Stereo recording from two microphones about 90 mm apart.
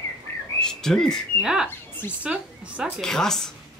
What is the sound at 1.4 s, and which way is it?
Speech, 5° right (ahead or behind).